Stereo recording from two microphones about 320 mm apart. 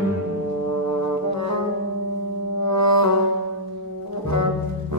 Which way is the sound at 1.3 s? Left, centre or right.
Right.